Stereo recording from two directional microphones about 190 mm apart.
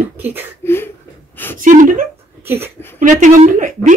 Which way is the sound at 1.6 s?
45° right (ahead or behind).